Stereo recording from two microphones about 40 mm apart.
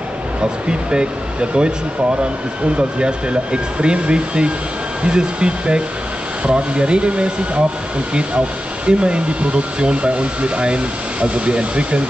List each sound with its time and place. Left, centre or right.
0.4 s speech: right
3.0 s speech: right
8.8 s speech: right